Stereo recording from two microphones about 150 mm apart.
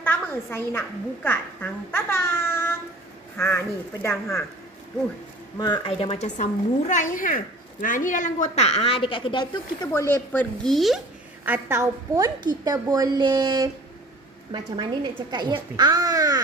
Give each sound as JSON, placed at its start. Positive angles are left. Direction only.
{"t": 0.0, "sound": "a woman's voice", "side_deg": 15}
{"t": 5.6, "sound": "a woman's voice", "side_deg": 35}
{"t": 9.9, "sound": "speech", "side_deg": 15}
{"t": 11.4, "sound": "a woman's voice", "side_deg": -15}
{"t": 15.3, "sound": "a woman's voice", "side_deg": -30}